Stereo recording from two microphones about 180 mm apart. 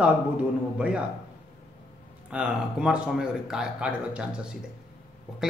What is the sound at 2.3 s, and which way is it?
A man's voice, 5° right (ahead or behind).